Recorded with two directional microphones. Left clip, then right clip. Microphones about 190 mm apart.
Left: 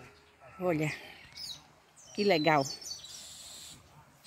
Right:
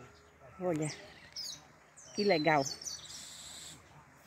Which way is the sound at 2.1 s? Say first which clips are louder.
Left 2 dB; 10° left (ahead or behind).